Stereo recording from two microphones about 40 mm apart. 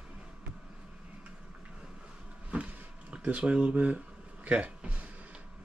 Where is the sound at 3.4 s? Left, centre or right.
Right.